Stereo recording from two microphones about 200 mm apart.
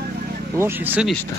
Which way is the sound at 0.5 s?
10° right (ahead or behind).